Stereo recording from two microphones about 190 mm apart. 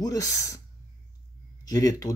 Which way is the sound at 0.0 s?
20° left (ahead or behind).